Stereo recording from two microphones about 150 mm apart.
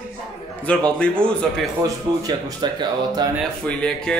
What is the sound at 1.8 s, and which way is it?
Speech, 25° right (ahead or behind).